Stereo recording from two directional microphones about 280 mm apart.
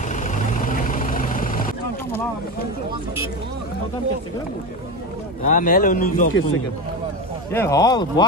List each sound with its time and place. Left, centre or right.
0.1 s vehicle: left
5.4 s a man's voice: left
7.5 s speech: centre